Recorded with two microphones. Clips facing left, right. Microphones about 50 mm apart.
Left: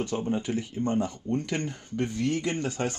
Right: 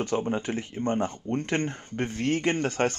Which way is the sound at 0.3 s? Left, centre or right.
Right.